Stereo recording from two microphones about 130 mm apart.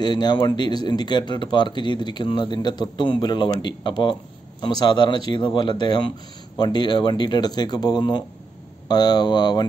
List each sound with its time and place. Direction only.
0.0 s speech: 35° left (ahead or behind)